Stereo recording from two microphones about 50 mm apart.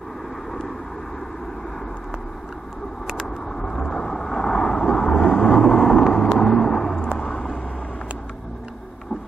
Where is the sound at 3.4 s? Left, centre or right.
Centre.